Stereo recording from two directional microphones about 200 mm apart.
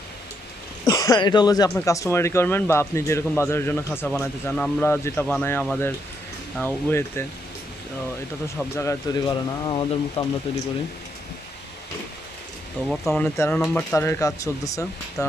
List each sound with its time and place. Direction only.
0.8 s speech: 15° left (ahead or behind)
8.5 s speech: 15° left (ahead or behind)
12.8 s speech: centre (ahead or behind)